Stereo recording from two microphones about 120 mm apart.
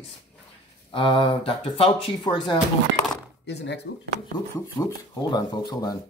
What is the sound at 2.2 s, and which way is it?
Speech, 40° left (ahead or behind).